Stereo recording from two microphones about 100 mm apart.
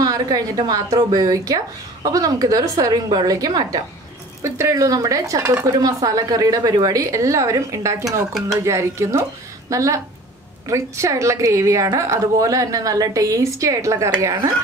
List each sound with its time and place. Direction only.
0.0 s speech: 40° right (ahead or behind)